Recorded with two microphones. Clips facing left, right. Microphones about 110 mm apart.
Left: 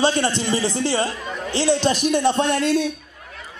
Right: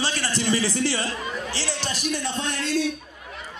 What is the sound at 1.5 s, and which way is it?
A man's voice, 55° left (ahead or behind).